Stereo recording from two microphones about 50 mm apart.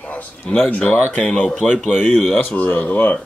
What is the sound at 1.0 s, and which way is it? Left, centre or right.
Speech, left.